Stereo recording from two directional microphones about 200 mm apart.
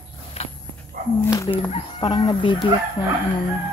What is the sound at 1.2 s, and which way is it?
Speech, 15° left (ahead or behind).